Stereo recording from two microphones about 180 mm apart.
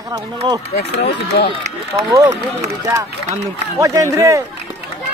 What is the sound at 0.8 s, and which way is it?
Speech, 70° left (ahead or behind).